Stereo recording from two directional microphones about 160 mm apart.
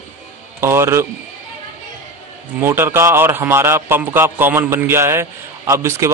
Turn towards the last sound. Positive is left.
turn(degrees=-15)  # may be behind; listen again after turning